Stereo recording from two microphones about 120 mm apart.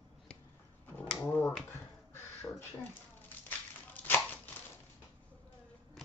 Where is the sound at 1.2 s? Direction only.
20° left (ahead or behind).